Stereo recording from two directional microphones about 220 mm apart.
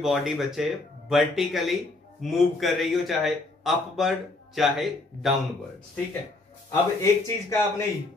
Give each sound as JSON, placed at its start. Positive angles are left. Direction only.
{"t": 0.0, "sound": "a man's voice", "side_deg": 0}
{"t": 6.7, "sound": "a man's voice", "side_deg": 15}